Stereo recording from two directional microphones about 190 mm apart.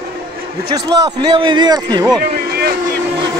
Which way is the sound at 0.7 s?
20° right (ahead or behind).